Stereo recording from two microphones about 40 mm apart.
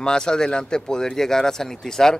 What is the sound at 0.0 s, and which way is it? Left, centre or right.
Speech, centre.